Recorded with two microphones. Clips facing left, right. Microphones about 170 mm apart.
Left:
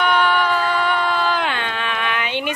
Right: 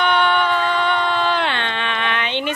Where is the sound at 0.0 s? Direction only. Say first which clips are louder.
Even; 5° left (ahead or behind).